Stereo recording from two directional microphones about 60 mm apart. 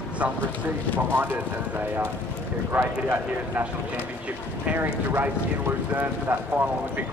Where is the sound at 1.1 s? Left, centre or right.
Right.